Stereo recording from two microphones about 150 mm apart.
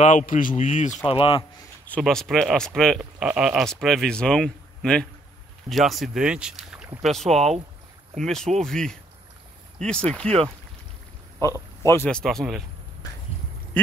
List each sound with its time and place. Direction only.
0.3 s speech: 65° left (ahead or behind)
1.0 s speech: 35° left (ahead or behind)
1.9 s speech: 5° left (ahead or behind)
7.2 s speech: 45° right (ahead or behind)
8.2 s speech: 5° left (ahead or behind)
11.3 s speech: 20° right (ahead or behind)
11.8 s speech: 20° left (ahead or behind)
12.1 s speech: 5° left (ahead or behind)